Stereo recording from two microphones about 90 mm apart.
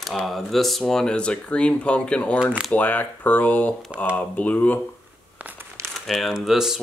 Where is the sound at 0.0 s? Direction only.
Centre (ahead or behind).